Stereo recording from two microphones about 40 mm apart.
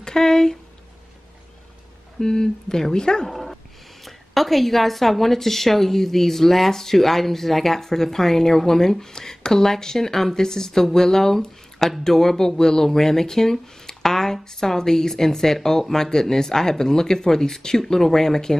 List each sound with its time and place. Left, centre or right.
0.0 s speech: centre
2.1 s a woman's voice: centre
3.3 s dog: centre
4.0 s a woman's voice: centre